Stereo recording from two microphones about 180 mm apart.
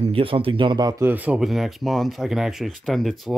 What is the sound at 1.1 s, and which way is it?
Speech, 10° right (ahead or behind).